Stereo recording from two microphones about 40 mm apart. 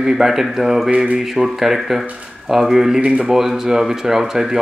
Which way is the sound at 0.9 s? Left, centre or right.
Right.